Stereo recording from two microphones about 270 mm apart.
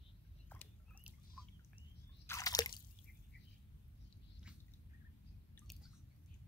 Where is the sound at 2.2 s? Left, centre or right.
Centre.